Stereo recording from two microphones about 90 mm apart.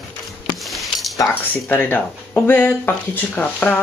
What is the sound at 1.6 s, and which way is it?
Speech, 20° left (ahead or behind).